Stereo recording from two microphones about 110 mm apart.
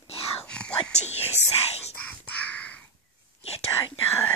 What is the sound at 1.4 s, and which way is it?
Whispering, 80° left.